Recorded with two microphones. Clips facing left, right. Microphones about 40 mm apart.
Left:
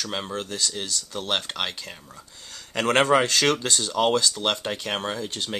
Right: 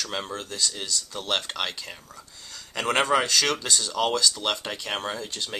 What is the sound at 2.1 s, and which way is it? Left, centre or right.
Speech, left.